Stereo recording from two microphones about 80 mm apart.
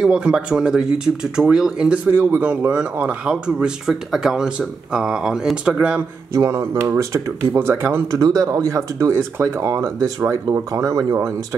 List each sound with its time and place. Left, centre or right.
0.0 s speech: centre
6.3 s speech: right
8.1 s speech: right